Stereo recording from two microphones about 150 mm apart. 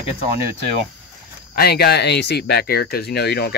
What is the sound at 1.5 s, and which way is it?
Speech, 90° left.